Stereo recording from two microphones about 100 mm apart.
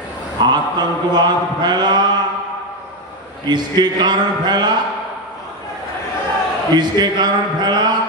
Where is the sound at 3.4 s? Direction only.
45° right (ahead or behind).